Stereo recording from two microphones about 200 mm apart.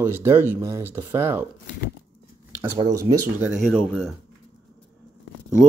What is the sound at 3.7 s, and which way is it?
Speech, 5° left (ahead or behind).